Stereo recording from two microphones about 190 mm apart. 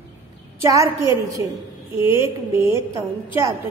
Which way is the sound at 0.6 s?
15° right (ahead or behind).